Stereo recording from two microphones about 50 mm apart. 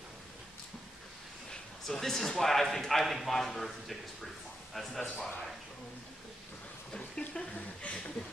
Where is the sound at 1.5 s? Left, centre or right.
Centre.